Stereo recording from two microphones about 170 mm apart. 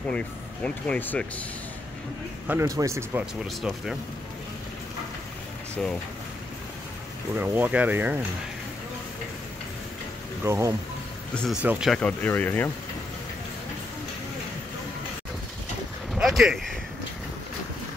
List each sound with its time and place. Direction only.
0.7 s speech: 10° left (ahead or behind)
2.4 s speech: 15° right (ahead or behind)
3.4 s speech: centre (ahead or behind)
7.3 s speech: 10° right (ahead or behind)
10.4 s speech: 15° right (ahead or behind)
11.9 s speech: 10° left (ahead or behind)
16.1 s vehicle: centre (ahead or behind)